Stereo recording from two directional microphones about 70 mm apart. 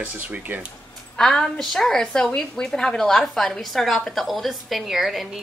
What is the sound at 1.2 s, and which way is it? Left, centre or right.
A woman's voice, centre.